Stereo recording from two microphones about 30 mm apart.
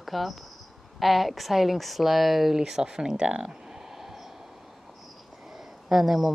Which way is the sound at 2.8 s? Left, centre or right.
Right.